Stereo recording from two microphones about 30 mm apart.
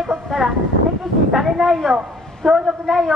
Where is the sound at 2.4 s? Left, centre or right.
Centre.